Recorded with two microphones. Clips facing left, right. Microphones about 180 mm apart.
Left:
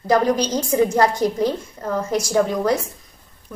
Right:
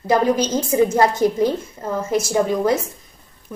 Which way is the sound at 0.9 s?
25° right (ahead or behind).